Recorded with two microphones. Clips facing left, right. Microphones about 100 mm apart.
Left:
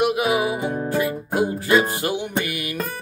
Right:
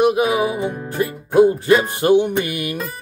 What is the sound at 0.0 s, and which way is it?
Music, 25° right (ahead or behind).